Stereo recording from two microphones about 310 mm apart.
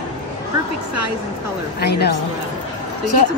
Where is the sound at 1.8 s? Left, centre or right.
Left.